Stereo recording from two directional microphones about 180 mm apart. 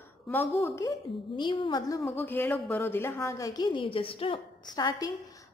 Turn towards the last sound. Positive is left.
turn(degrees=20)  # may be behind; listen again after turning